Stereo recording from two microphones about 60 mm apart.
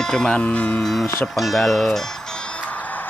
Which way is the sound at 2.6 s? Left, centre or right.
Left.